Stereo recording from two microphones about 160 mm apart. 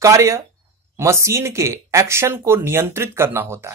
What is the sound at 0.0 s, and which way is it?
Speech, 20° right (ahead or behind).